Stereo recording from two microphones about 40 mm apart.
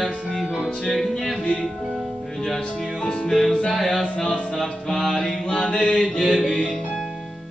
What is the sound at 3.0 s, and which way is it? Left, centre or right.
Music, centre.